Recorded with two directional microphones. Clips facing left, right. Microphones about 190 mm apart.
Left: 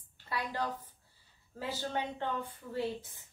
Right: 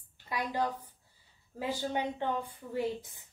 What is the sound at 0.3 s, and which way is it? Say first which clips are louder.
A woman's voice: right 3 dB; 15° right (ahead or behind).